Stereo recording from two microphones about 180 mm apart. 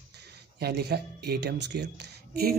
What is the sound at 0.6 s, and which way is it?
Speech, 60° right (ahead or behind).